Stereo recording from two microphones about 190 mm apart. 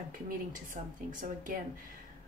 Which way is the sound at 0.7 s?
45° right (ahead or behind).